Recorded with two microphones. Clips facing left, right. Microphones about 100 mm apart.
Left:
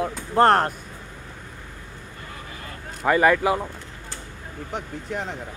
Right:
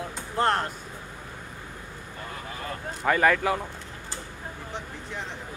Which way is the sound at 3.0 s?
5° left (ahead or behind).